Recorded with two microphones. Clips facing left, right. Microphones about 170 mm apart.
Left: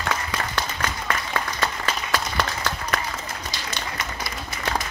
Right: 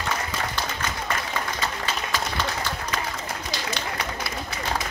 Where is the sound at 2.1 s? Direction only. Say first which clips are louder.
Left 3 dB; 65° left (ahead or behind).